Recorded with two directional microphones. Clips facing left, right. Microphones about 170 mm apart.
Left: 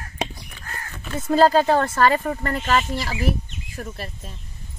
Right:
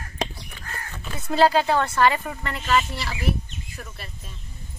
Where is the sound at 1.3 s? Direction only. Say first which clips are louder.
Left 3 dB; 45° left (ahead or behind).